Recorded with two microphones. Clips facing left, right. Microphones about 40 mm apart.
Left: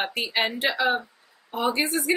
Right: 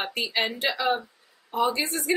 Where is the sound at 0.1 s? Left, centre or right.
Left.